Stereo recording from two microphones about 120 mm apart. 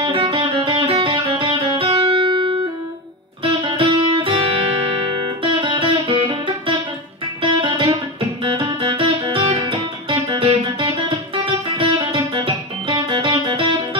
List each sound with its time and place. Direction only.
0.0 s music: 45° right (ahead or behind)